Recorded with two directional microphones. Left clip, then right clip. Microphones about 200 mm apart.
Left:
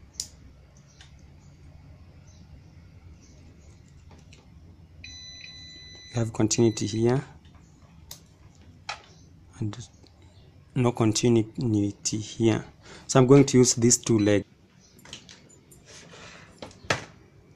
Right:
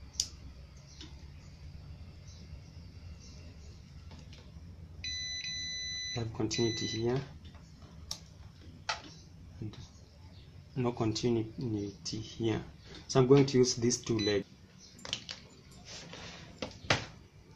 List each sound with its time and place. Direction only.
6.1 s speech: 60° left (ahead or behind)
9.6 s speech: 55° left (ahead or behind)